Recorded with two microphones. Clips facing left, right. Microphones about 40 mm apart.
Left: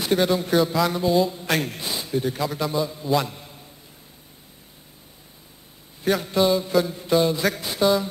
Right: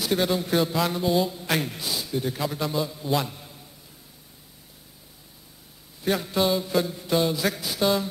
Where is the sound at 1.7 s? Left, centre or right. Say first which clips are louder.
Left 1 dB; centre.